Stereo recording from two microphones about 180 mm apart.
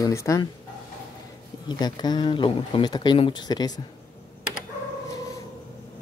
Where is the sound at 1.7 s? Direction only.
25° left (ahead or behind).